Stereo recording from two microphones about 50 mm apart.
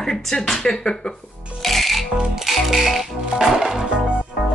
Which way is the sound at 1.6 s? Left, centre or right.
Centre.